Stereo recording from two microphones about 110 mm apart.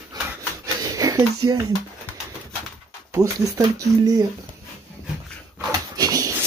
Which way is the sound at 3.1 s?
30° right (ahead or behind).